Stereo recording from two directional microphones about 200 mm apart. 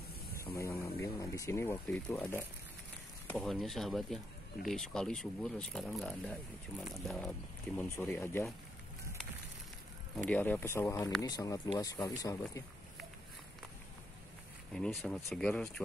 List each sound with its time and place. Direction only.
0.6 s speech: 15° left (ahead or behind)
10.1 s speech: 5° left (ahead or behind)
14.7 s speech: centre (ahead or behind)